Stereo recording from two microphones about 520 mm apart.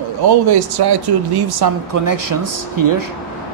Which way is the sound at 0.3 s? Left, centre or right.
Right.